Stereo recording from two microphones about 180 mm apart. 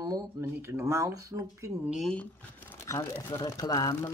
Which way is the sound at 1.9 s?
5° left (ahead or behind).